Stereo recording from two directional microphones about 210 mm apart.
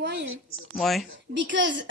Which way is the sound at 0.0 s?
60° right (ahead or behind).